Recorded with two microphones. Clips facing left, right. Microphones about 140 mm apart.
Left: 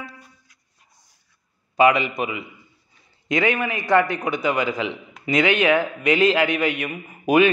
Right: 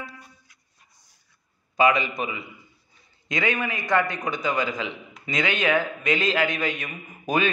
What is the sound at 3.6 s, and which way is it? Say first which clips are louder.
A man's voice: left 5 dB; 25° left (ahead or behind).